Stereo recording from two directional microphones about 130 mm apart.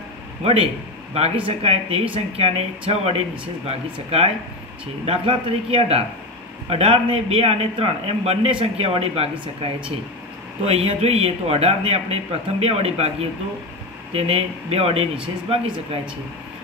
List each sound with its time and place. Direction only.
0.4 s a man's voice: 50° right (ahead or behind)
10.6 s speech: 50° right (ahead or behind)